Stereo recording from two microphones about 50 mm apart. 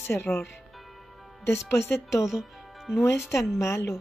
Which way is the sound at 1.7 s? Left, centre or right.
Left.